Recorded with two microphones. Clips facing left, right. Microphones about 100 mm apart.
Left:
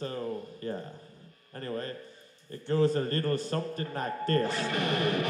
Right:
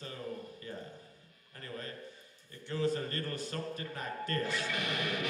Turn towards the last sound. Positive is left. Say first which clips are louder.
# left 8 dB
turn(degrees=40)  # may be behind; listen again after turning